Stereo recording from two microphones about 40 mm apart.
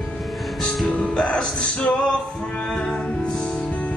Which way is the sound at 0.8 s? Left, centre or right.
Left.